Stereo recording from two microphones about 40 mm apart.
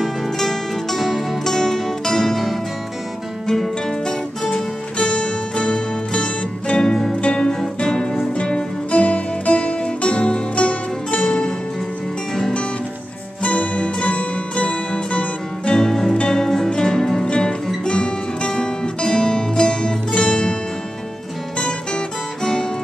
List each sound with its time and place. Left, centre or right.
0.0 s music: centre
4.6 s music: left
13.4 s music: left
15.7 s music: centre
17.3 s guitar: left
17.8 s music: left
21.5 s music: left